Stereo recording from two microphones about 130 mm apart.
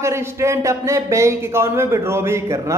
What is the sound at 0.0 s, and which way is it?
Speech, 20° right (ahead or behind).